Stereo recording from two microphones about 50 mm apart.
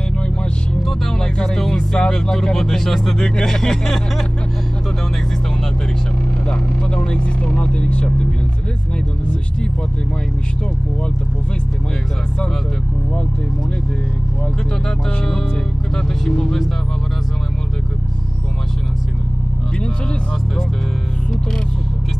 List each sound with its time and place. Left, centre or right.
0.8 s music: centre
3.3 s speech: centre
6.4 s speech: centre
16.0 s speech: centre